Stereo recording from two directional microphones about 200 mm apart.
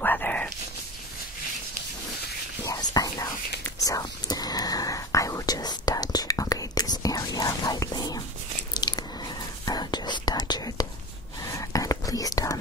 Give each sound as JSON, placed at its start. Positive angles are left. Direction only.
{"t": 0.0, "sound": "whispering", "side_deg": 10}
{"t": 2.6, "sound": "whispering", "side_deg": 15}
{"t": 8.7, "sound": "biting", "side_deg": 20}
{"t": 9.7, "sound": "whispering", "side_deg": 20}